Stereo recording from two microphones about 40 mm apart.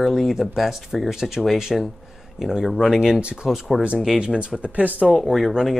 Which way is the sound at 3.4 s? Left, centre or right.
Centre.